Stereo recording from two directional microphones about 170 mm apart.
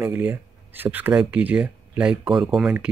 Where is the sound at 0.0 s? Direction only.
10° right (ahead or behind).